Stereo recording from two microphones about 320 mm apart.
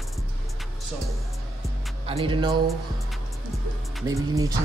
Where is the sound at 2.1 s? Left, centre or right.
Centre.